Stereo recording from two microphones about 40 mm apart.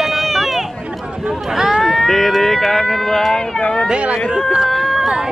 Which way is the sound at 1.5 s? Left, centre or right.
Centre.